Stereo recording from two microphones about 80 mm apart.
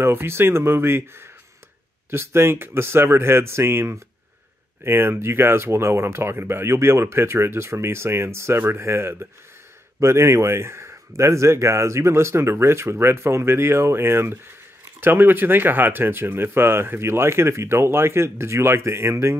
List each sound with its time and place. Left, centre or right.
0.0 s speech: right